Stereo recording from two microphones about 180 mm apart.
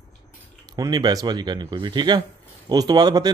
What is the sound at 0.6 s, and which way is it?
Speech, 20° right (ahead or behind).